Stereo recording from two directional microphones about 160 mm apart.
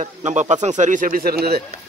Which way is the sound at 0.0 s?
50° right (ahead or behind).